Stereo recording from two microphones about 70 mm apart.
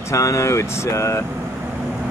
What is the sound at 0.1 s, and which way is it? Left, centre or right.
Speech, left.